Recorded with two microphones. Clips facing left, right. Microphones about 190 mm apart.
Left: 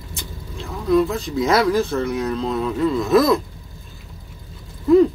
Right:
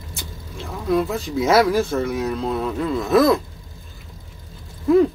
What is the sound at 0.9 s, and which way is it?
Speech, 5° right (ahead or behind).